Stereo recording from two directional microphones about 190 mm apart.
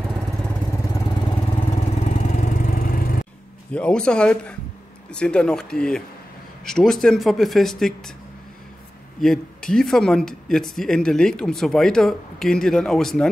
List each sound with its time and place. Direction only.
1.3 s vehicle: 35° left (ahead or behind)
3.7 s speech: 5° left (ahead or behind)
9.2 s speech: 5° left (ahead or behind)